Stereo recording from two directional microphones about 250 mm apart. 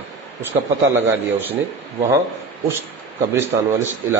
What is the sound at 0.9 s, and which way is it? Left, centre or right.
Speech, centre.